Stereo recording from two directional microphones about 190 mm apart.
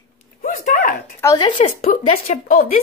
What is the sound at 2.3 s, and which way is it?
Speech, 35° left (ahead or behind).